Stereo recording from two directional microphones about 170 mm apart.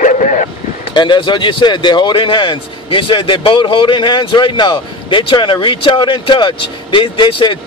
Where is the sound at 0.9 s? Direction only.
25° left (ahead or behind).